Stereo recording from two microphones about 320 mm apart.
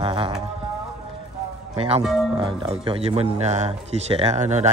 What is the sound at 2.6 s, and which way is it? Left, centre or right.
A man's voice, centre.